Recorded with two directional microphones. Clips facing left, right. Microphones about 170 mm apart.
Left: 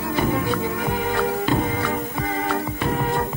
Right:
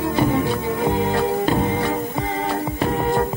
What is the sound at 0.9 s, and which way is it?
Music, 30° right (ahead or behind).